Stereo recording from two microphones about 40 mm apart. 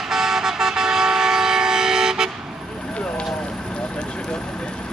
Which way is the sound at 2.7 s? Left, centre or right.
Centre.